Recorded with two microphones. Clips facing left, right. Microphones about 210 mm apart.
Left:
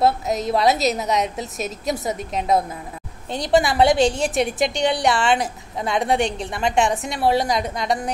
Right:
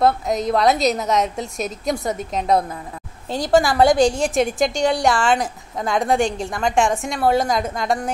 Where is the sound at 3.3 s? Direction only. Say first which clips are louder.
Right 2 dB; 20° left (ahead or behind).